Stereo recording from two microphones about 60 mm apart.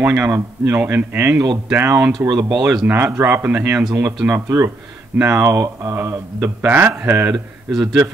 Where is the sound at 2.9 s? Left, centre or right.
Right.